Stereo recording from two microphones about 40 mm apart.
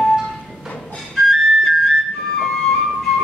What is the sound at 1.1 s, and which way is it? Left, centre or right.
Whistle, centre.